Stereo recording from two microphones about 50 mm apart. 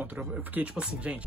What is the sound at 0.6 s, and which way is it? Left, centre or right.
Speech, right.